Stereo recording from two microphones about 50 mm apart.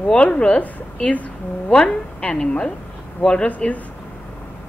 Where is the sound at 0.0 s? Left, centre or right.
Left.